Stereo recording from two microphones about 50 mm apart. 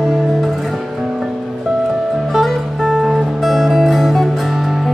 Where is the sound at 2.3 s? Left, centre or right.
Centre.